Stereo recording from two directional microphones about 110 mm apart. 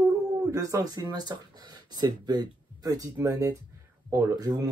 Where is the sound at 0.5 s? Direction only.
30° right (ahead or behind).